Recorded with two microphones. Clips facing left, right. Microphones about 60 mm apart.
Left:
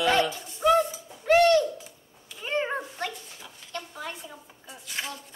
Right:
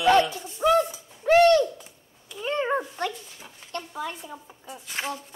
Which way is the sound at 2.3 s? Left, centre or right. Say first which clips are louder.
Right 1 dB; centre.